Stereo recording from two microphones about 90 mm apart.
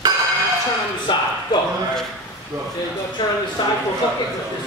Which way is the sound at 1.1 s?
60° left (ahead or behind).